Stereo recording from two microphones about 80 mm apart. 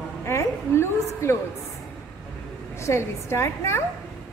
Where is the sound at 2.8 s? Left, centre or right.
Left.